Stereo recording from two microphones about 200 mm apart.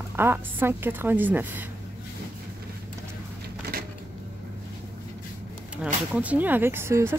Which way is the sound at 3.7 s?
45° right (ahead or behind).